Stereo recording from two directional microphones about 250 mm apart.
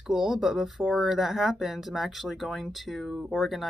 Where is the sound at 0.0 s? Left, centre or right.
Centre.